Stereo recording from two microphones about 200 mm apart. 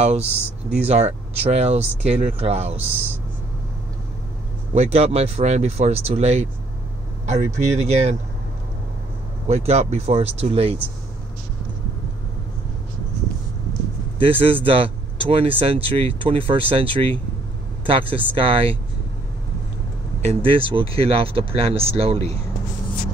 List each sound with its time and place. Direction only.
0.0 s speech: 30° right (ahead or behind)
4.7 s speech: 30° right (ahead or behind)
9.5 s speech: 35° right (ahead or behind)
14.4 s speech: 25° right (ahead or behind)
20.2 s speech: 25° right (ahead or behind)